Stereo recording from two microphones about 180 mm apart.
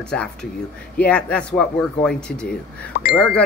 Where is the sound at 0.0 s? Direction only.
5° left (ahead or behind).